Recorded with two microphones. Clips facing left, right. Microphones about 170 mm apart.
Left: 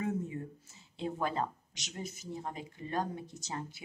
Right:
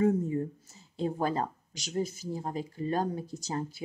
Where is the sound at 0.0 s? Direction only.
40° right (ahead or behind).